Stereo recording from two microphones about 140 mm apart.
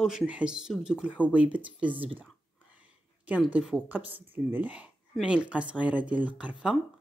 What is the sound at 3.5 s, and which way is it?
Speech, 10° right (ahead or behind).